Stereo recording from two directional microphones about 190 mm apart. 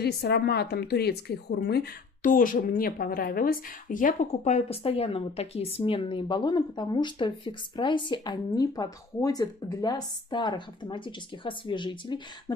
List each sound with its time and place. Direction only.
0.0 s speech: 55° left (ahead or behind); by 12.5 s 25° left (ahead or behind)